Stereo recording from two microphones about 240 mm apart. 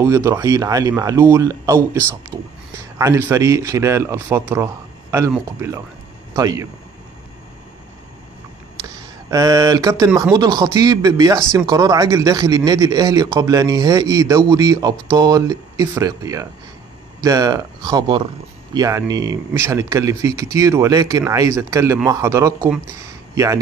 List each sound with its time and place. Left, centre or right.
0.0 s speech: centre
2.3 s a sound: centre
3.0 s speech: centre
9.3 s speech: centre